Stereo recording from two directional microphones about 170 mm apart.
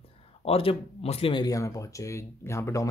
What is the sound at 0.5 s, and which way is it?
Speech, 35° left (ahead or behind).